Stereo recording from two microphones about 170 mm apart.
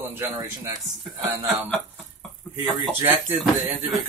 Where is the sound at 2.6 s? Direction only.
10° right (ahead or behind).